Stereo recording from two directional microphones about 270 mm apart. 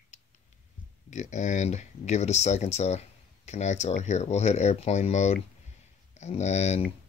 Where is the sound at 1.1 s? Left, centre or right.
Left.